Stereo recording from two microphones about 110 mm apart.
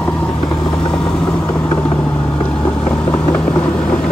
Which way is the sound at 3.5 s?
35° left (ahead or behind).